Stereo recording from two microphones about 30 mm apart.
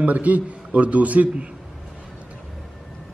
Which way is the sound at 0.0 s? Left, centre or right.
Right.